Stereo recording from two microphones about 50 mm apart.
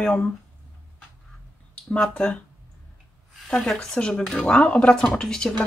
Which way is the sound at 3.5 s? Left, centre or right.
Centre.